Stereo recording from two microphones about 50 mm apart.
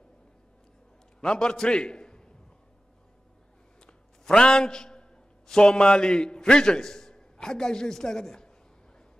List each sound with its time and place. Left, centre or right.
1.2 s a man's voice: centre
3.8 s a sound: centre
5.5 s a man's voice: centre